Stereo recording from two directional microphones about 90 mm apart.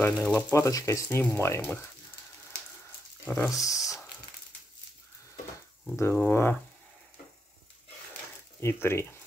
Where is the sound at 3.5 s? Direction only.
40° left (ahead or behind).